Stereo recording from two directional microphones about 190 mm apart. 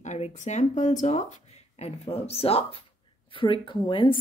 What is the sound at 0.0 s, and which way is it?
A woman's voice, 40° left (ahead or behind).